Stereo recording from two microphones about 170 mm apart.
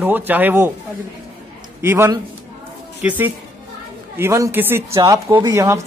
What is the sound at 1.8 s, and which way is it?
A woman's voice, 15° right (ahead or behind).